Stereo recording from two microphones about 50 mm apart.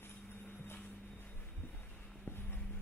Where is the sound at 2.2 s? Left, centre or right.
Left.